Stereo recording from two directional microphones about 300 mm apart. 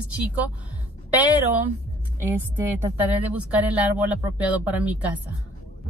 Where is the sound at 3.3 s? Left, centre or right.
Centre.